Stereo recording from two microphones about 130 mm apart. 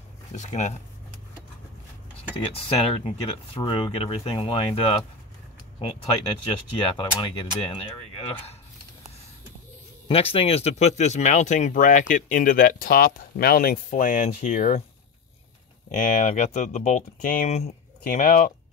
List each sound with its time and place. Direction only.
0.3 s speech: 65° left (ahead or behind)
2.3 s speech: 50° left (ahead or behind)
10.0 s speech: 50° left (ahead or behind); by 14.8 s 75° left (ahead or behind)
15.9 s speech: 75° left (ahead or behind); by 17.5 s 90° left
17.5 s speech: 55° left (ahead or behind)
18.0 s speech: 90° left